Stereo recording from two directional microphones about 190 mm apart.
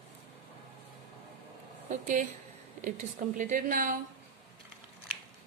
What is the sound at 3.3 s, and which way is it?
Speech, 45° right (ahead or behind).